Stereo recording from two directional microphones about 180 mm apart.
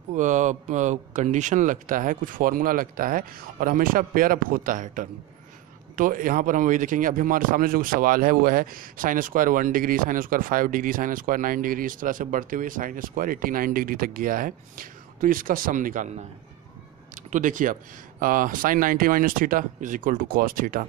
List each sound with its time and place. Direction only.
0.1 s speech: 45° right (ahead or behind)
17.1 s speech: 45° right (ahead or behind)